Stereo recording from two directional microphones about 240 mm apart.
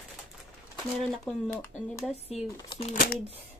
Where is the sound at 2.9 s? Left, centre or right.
Left.